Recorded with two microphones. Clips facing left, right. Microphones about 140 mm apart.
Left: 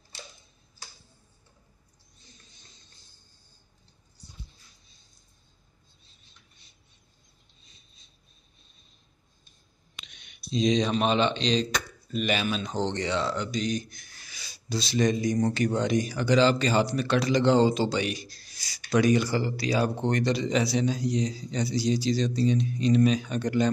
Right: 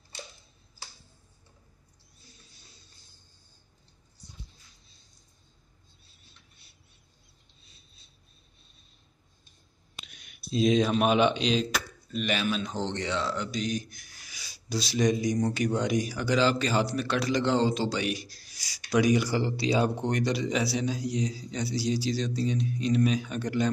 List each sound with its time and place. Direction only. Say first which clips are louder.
2.1 s a sound: even; 5° right (ahead or behind)
6.0 s bird: right 1 dB; 5° right (ahead or behind)
9.9 s speech: right 1 dB; 5° right (ahead or behind)
19.4 s speech: right 1 dB; 25° right (ahead or behind)
20.0 s a man's voice: left 2 dB; 10° right (ahead or behind)